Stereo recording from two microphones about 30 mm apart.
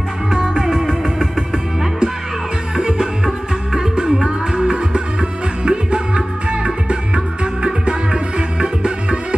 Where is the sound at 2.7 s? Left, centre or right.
Centre.